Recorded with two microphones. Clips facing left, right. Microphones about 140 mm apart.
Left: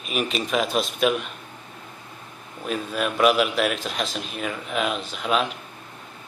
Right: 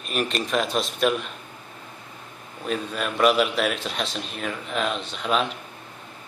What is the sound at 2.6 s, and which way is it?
Speech, 5° left (ahead or behind).